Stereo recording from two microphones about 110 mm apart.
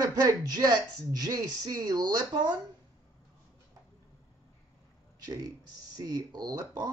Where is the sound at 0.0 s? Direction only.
35° right (ahead or behind).